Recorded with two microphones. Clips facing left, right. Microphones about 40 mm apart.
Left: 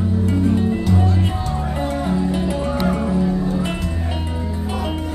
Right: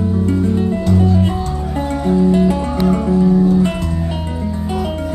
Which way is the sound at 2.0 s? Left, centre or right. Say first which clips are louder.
Right 11 dB; centre.